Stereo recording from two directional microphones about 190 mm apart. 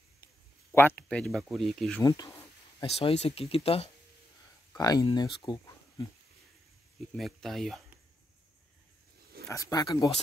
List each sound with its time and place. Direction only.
0.7 s speech: 10° left (ahead or behind)
2.0 s speech: 20° left (ahead or behind)
2.8 s speech: 30° left (ahead or behind)
4.7 s speech: 20° left (ahead or behind)
7.2 s speech: centre (ahead or behind)
9.5 s speech: 15° left (ahead or behind)